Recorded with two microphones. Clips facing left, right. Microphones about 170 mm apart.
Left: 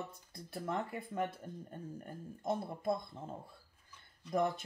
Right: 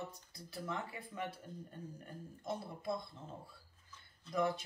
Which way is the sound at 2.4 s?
50° left (ahead or behind).